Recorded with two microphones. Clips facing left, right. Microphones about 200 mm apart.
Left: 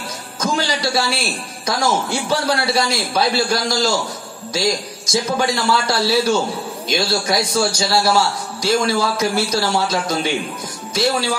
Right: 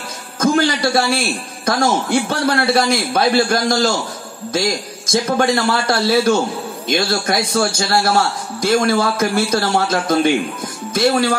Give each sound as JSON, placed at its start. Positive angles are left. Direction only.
{"t": 0.4, "sound": "a man's voice", "side_deg": -55}
{"t": 5.0, "sound": "a man's voice", "side_deg": -50}